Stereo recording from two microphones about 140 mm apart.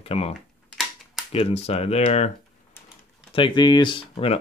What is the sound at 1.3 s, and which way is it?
Speech, 45° left (ahead or behind).